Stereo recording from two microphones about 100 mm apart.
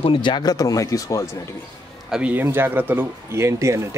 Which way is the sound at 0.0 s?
55° left (ahead or behind).